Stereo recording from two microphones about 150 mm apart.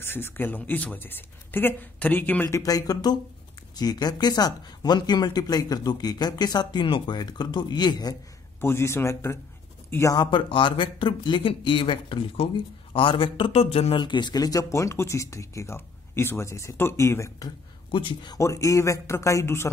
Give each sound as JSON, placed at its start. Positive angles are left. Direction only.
{"t": 0.0, "sound": "speech", "side_deg": 15}
{"t": 8.5, "sound": "speech", "side_deg": 15}
{"t": 17.9, "sound": "speech", "side_deg": 30}
{"t": 18.4, "sound": "speech", "side_deg": 20}